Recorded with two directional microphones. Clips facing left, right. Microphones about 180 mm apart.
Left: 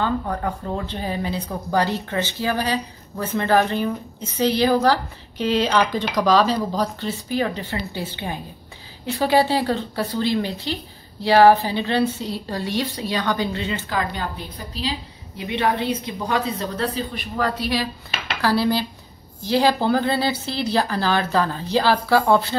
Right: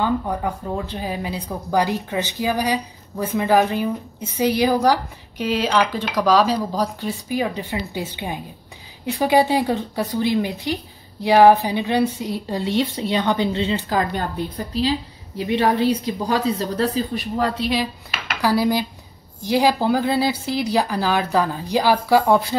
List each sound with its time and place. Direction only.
0.0 s speech: 10° right (ahead or behind); by 14.2 s 40° right (ahead or behind)
15.3 s speech: 35° right (ahead or behind)
17.6 s speech: 20° right (ahead or behind)